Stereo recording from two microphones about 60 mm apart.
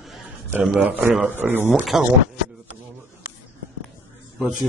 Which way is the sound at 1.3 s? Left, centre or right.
Right.